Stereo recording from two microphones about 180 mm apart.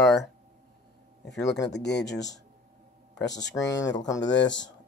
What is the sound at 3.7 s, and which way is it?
Speech, 20° left (ahead or behind).